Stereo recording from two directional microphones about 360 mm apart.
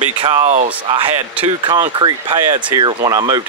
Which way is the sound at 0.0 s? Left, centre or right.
Centre.